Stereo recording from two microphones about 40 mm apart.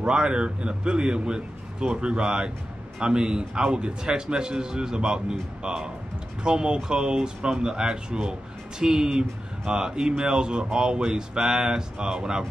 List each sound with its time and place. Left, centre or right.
0.0 s a man's voice: right